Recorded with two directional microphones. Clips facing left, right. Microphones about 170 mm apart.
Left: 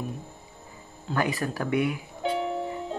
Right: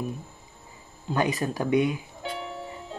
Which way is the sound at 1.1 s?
20° right (ahead or behind).